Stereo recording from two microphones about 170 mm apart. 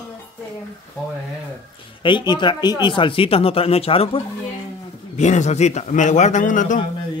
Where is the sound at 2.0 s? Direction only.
25° left (ahead or behind).